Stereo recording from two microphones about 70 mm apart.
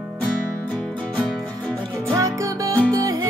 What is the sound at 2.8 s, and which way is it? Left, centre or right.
Music, left.